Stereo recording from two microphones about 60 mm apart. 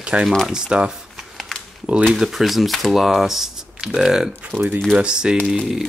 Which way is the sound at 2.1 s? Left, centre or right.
Centre.